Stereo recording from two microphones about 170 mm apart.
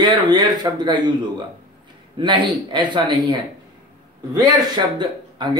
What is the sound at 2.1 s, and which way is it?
Speech, 30° right (ahead or behind).